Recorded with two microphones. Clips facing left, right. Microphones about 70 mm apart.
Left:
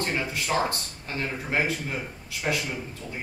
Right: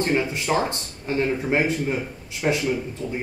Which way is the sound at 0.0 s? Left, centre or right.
Right.